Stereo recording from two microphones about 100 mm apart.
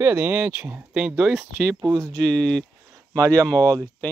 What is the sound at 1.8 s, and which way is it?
Speech, 35° right (ahead or behind).